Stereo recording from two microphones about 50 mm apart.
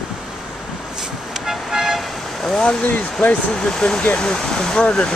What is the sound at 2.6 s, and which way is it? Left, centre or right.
Speech, left.